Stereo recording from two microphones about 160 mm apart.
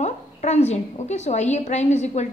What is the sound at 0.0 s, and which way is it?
A woman's voice, 45° left (ahead or behind).